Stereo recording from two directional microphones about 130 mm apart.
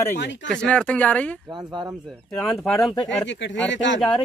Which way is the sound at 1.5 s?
35° right (ahead or behind).